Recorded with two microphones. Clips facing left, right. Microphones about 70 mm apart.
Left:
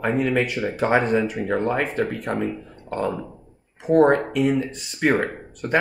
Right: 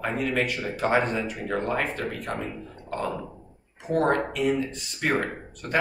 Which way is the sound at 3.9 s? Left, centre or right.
Centre.